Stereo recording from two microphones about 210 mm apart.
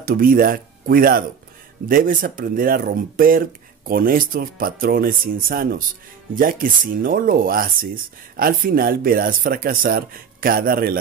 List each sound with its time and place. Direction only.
0.0 s speech: 45° right (ahead or behind)